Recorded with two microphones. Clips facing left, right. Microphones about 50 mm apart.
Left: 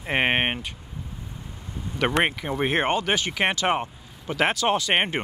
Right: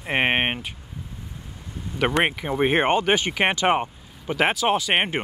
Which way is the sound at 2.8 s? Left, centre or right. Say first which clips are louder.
Right 3 dB; right.